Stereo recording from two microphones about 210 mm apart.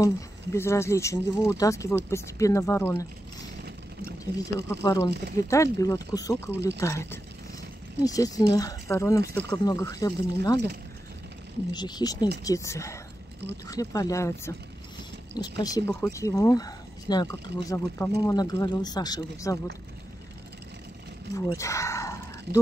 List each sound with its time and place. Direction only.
0.0 s speech: 15° left (ahead or behind)
4.2 s speech: 15° left (ahead or behind)
11.7 s speech: 20° left (ahead or behind)
21.4 s a sound: 15° left (ahead or behind)